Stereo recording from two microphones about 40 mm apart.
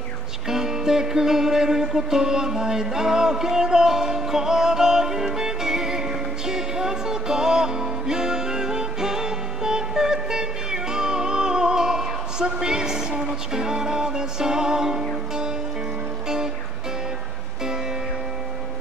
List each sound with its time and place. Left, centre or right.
0.5 s music: centre